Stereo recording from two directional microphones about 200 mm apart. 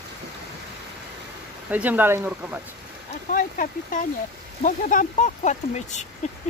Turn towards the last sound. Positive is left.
turn(degrees=35)  # may be behind; listen again after turning